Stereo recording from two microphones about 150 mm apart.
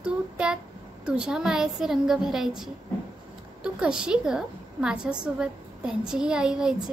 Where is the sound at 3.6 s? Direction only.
5° right (ahead or behind).